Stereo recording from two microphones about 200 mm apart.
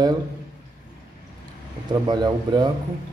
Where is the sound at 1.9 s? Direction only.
20° right (ahead or behind).